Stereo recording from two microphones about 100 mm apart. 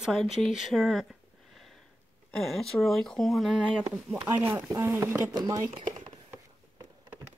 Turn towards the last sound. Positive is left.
turn(degrees=-40)  # may be behind; listen again after turning